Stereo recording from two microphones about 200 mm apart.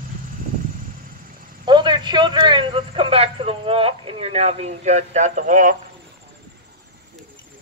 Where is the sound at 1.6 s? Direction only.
20° right (ahead or behind); by 5.7 s 40° right (ahead or behind).